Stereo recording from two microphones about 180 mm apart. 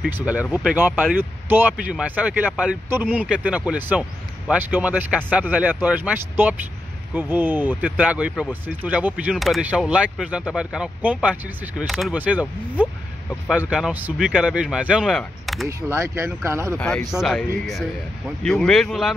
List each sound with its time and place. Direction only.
0.1 s speech: 5° right (ahead or behind)
15.9 s speech: 15° right (ahead or behind)
16.7 s speech: 5° left (ahead or behind)